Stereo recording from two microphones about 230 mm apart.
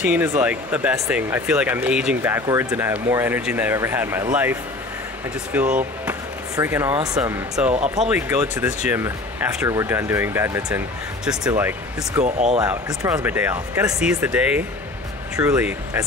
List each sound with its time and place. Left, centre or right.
0.0 s speech: centre
12.2 s speech: right
12.5 s speech: centre